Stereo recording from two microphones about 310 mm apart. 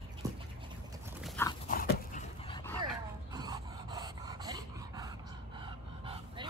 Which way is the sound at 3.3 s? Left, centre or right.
Centre.